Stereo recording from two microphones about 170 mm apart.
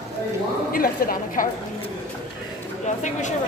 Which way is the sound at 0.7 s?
55° left (ahead or behind).